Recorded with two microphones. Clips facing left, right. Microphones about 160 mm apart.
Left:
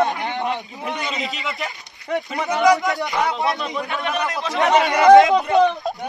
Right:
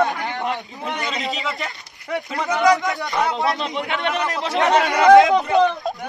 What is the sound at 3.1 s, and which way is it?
Speech, centre (ahead or behind).